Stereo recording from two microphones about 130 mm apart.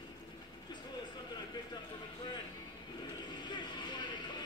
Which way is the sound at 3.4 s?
35° left (ahead or behind).